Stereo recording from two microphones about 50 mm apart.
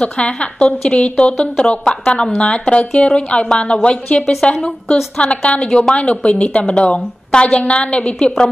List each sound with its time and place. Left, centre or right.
0.0 s a woman's voice: left